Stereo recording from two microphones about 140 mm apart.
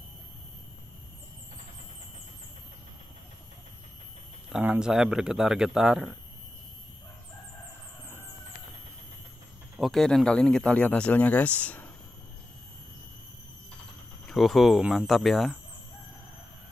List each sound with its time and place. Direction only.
4.5 s speech: 5° right (ahead or behind)
9.8 s speech: centre (ahead or behind)
14.2 s speech: centre (ahead or behind)